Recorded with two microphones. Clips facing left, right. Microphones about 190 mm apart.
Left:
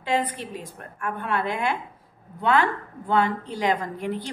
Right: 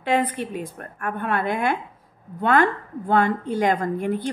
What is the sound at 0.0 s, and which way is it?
A woman's voice, 55° right (ahead or behind).